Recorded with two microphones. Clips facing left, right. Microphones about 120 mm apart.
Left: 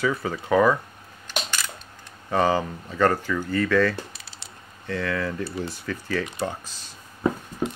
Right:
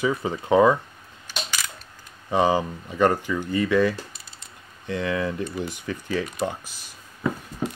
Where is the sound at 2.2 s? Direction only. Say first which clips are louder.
Right 1 dB; 15° right (ahead or behind).